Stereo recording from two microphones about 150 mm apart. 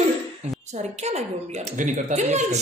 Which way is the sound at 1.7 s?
55° right (ahead or behind).